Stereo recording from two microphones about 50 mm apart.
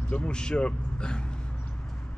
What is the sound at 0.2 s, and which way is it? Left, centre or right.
Speech, centre.